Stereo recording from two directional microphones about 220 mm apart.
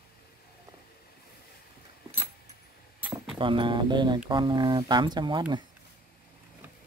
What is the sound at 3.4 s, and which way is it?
Speech, 20° right (ahead or behind).